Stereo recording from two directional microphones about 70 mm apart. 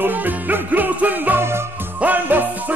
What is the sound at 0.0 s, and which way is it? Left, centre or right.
Music, right.